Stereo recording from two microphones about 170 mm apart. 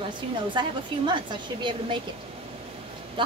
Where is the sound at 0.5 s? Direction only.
25° right (ahead or behind).